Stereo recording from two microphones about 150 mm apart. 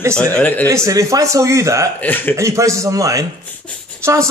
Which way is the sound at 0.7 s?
20° right (ahead or behind).